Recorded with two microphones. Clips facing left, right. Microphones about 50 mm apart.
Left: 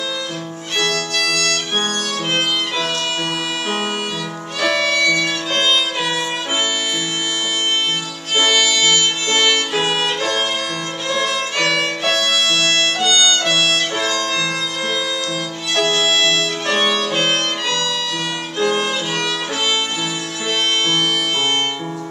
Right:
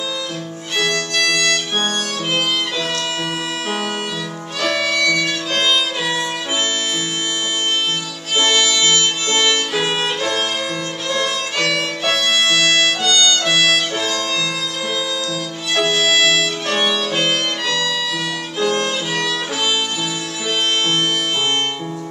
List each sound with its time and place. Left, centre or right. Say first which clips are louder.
0.7 s violin: right 1 dB; centre
1.3 s music: right 4 dB; centre
4.6 s violin: left 2 dB; centre
5.0 s music: left 1 dB; centre
8.5 s music: even; centre
9.8 s violin: left 1 dB; centre
11.1 s violin: left 1 dB; centre
11.6 s violin: left 1 dB; centre
12.4 s music: right 2 dB; centre
13.0 s music: even; centre
13.4 s music: right 1 dB; centre
15.7 s violin: right 1 dB; centre
16.6 s violin: left 1 dB; centre